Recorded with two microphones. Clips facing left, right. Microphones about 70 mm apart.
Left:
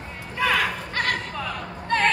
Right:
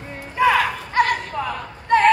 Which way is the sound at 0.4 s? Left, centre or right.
Centre.